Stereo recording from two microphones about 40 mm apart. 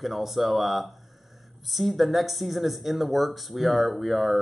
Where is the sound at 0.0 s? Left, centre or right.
Centre.